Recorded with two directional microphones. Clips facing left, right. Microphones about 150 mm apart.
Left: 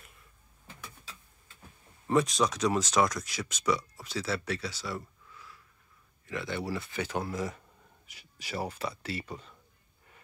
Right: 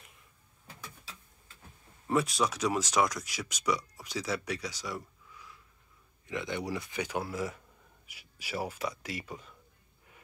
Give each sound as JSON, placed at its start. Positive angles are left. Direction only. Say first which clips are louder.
{"t": 2.0, "sound": "speech", "louder": "left 2 dB", "side_deg": -5}